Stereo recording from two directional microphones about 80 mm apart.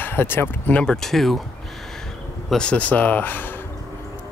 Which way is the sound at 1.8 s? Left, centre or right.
Centre.